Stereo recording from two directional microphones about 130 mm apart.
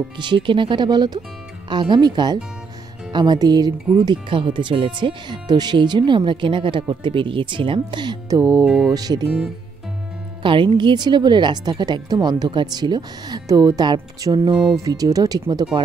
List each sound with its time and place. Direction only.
0.2 s speech: 35° right (ahead or behind)
8.6 s speech: 5° right (ahead or behind)
8.9 s speech: 30° right (ahead or behind)
10.4 s speech: 40° right (ahead or behind)